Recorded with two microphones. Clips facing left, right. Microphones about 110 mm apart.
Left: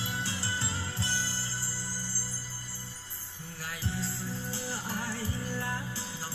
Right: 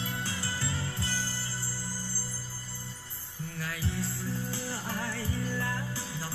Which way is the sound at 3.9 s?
60° right (ahead or behind).